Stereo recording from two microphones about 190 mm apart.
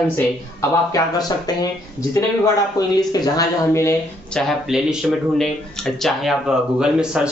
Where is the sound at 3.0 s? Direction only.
20° left (ahead or behind).